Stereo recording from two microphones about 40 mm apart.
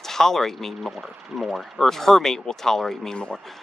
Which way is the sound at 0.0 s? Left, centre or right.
Centre.